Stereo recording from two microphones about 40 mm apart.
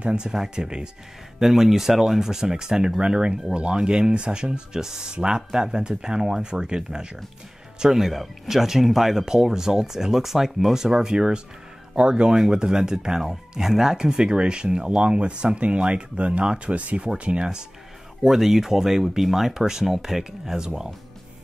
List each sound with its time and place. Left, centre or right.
0.0 s speech: right
1.4 s speech: centre
7.8 s speech: centre
18.2 s speech: centre